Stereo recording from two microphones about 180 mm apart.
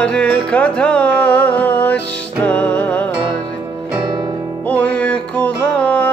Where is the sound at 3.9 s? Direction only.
20° right (ahead or behind).